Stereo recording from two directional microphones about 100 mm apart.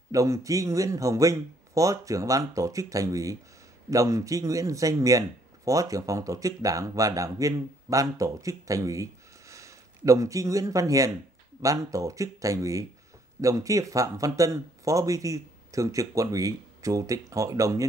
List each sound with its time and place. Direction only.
0.1 s speech: 35° right (ahead or behind)